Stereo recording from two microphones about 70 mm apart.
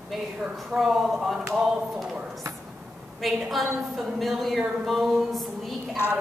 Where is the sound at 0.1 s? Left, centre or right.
Centre.